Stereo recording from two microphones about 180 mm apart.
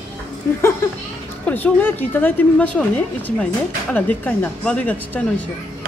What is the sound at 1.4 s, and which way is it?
A woman's voice, 10° left (ahead or behind).